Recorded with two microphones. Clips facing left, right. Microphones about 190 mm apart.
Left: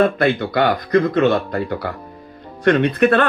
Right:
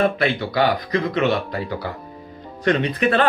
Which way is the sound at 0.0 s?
55° left (ahead or behind).